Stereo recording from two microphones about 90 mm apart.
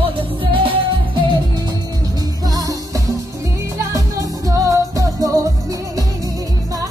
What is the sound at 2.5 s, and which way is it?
Music, 40° right (ahead or behind).